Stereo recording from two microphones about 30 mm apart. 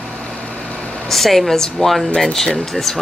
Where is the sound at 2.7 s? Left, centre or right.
Centre.